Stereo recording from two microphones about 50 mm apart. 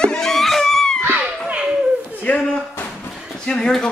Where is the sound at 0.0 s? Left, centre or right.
Centre.